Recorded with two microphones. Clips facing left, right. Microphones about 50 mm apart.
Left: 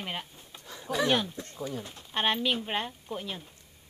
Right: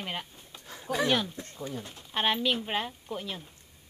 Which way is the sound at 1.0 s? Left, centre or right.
Centre.